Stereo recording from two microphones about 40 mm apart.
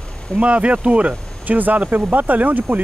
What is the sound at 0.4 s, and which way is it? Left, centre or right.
Speech, right.